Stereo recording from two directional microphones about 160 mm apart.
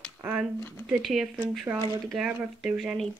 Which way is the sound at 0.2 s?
10° right (ahead or behind).